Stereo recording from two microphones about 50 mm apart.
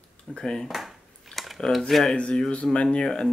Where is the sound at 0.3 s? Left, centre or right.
Centre.